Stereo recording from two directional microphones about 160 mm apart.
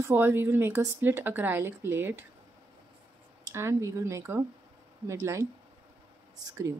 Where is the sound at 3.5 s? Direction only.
15° right (ahead or behind).